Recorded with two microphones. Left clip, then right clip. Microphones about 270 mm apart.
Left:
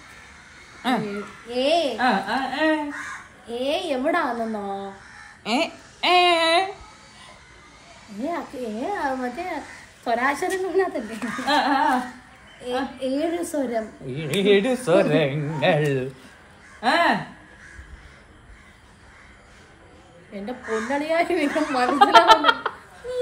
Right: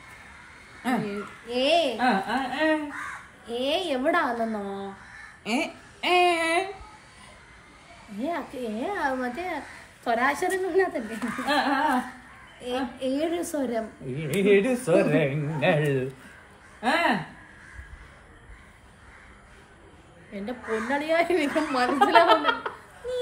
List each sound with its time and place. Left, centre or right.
0.8 s a woman's voice: centre
5.4 s a sound: centre
8.2 s a woman's voice: centre
20.3 s a woman's voice: centre